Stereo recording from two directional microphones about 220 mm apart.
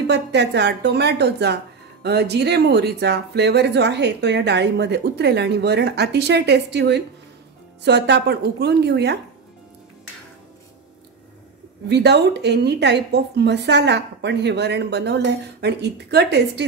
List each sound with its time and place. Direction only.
0.0 s speech: 50° right (ahead or behind)
11.9 s speech: 50° right (ahead or behind)